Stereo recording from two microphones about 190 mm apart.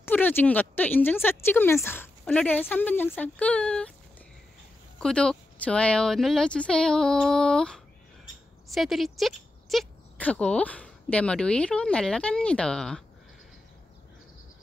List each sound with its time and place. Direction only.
0.0 s speech: 10° left (ahead or behind)
5.0 s speech: 5° left (ahead or behind)